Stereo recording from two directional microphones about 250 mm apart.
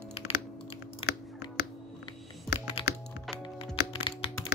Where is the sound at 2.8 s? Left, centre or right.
Left.